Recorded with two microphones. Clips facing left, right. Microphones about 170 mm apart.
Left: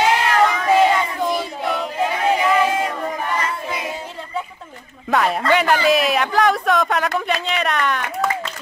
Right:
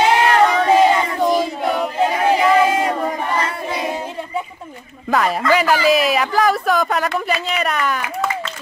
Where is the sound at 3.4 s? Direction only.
35° right (ahead or behind).